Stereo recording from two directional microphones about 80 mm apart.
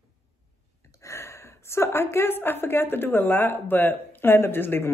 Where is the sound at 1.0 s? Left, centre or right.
Left.